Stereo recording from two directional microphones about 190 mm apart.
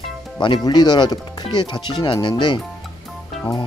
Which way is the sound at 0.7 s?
20° left (ahead or behind).